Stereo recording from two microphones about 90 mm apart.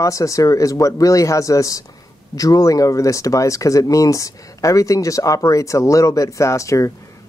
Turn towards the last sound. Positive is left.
turn(degrees=35)  # may be behind; listen again after turning